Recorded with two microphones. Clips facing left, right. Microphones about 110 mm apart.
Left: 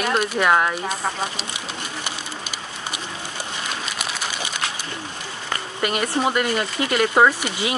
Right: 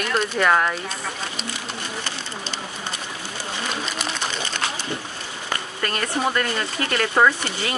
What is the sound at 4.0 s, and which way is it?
Pigeon, 10° left (ahead or behind).